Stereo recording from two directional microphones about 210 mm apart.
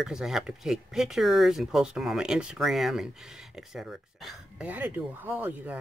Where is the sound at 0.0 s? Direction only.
Centre (ahead or behind).